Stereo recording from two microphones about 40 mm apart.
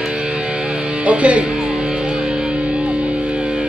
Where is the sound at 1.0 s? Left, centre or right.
Right.